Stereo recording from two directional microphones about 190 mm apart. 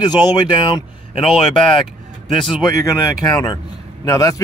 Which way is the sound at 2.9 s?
20° left (ahead or behind).